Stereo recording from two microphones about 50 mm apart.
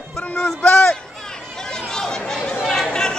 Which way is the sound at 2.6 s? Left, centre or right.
Centre.